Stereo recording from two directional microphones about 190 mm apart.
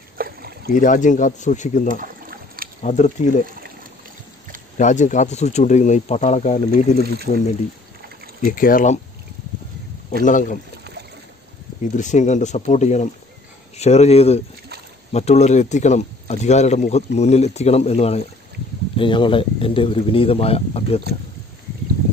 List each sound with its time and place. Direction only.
0.2 s a sound: 55° right (ahead or behind)
0.7 s speech: 40° left (ahead or behind)
1.9 s a sound: 45° right (ahead or behind)
2.8 s speech: 35° left (ahead or behind)
4.7 s speech: 40° left (ahead or behind)
7.0 s speech: 55° right (ahead or behind)
8.5 s speech: 45° left (ahead or behind)
10.2 s speech: 45° left (ahead or behind)
11.8 s speech: 40° left (ahead or behind)